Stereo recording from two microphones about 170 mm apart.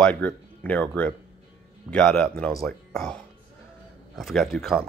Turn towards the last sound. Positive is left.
turn(degrees=0)  # may be behind; listen again after turning